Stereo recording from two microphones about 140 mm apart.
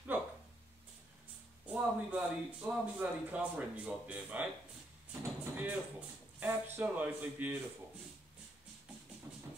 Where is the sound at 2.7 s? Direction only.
10° right (ahead or behind).